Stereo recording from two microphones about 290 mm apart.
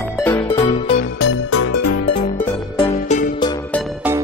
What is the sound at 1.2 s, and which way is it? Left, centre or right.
Music, left.